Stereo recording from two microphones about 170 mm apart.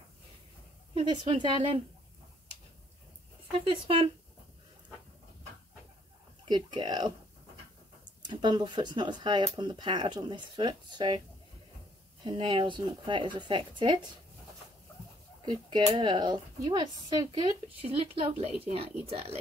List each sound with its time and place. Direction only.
0.9 s speech: 25° right (ahead or behind)
3.5 s speech: 30° right (ahead or behind)
6.4 s speech: 25° right (ahead or behind)
8.2 s speech: 25° right (ahead or behind)
12.3 s speech: 30° right (ahead or behind)
15.4 s speech: 25° right (ahead or behind)